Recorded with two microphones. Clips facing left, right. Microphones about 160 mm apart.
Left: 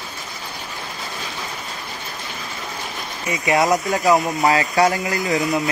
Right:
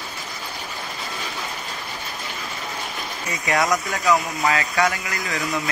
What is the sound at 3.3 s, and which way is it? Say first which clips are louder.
Speech: left 4 dB; 20° left (ahead or behind).